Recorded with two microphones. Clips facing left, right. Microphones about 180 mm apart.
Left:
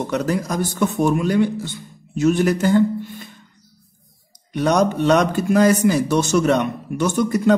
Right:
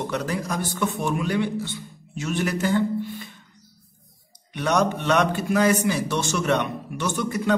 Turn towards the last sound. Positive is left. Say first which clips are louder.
# left 7 dB
turn(degrees=40)  # may be behind; listen again after turning